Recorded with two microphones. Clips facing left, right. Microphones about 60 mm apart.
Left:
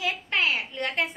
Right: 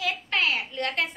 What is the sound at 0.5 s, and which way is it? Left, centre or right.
Speech, centre.